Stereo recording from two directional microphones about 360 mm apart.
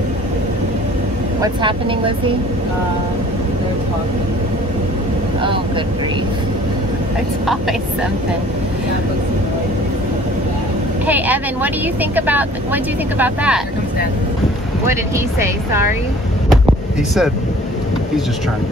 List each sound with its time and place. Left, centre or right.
1.4 s speech: centre
11.1 s speech: centre
14.9 s speech: centre